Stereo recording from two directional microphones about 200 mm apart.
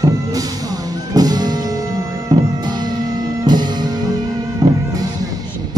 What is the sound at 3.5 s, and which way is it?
Music, 20° right (ahead or behind).